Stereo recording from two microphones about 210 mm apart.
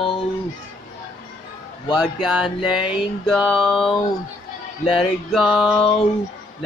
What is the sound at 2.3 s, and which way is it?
Mantra, 5° right (ahead or behind).